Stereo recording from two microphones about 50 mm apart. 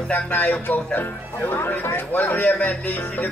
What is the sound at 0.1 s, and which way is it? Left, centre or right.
Speech, left.